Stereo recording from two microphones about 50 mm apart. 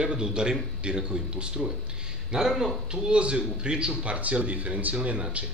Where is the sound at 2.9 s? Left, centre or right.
Centre.